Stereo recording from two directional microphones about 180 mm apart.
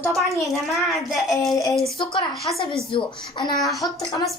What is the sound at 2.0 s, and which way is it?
Speech, 25° left (ahead or behind).